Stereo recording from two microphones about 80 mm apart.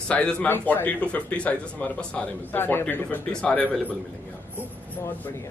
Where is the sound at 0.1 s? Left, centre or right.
Centre.